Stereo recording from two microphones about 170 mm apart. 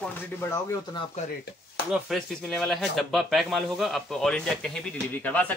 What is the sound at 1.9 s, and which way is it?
Speech, centre (ahead or behind).